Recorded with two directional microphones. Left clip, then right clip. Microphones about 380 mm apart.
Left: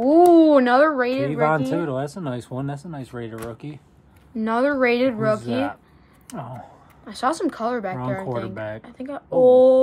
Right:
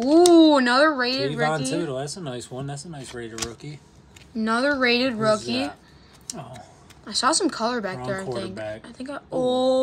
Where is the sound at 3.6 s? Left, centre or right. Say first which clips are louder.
Left 4 dB; left.